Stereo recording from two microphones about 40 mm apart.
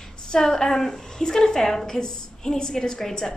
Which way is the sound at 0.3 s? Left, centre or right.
Centre.